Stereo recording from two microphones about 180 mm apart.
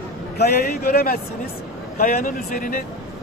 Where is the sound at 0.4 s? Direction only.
55° left (ahead or behind).